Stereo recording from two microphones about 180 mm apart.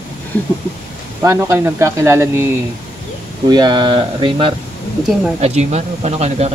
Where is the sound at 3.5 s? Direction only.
25° right (ahead or behind).